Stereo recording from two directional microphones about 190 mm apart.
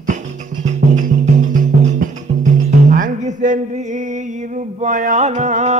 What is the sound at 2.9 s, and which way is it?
Music, 45° right (ahead or behind).